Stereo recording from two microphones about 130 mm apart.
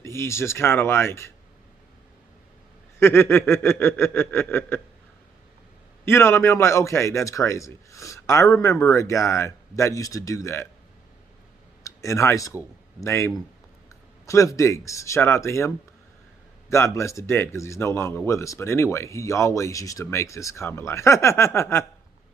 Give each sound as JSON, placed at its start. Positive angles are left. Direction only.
{"t": 0.0, "sound": "speech", "side_deg": 20}
{"t": 3.0, "sound": "a sound", "side_deg": 20}
{"t": 6.0, "sound": "speech", "side_deg": 20}
{"t": 11.8, "sound": "speech", "side_deg": 25}